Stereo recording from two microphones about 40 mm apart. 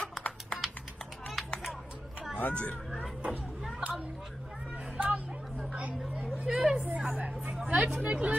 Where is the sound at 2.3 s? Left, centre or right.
Left.